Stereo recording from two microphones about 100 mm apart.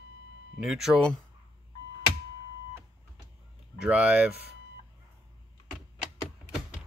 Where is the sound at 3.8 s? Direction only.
10° right (ahead or behind).